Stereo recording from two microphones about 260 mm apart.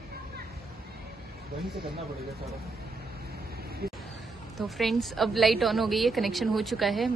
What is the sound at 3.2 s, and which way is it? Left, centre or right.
Vehicle, right.